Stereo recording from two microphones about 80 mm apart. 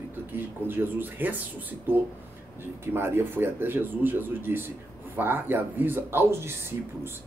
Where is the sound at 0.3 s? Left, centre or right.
Right.